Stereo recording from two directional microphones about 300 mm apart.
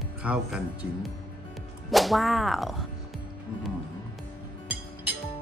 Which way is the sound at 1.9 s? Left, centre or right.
Centre.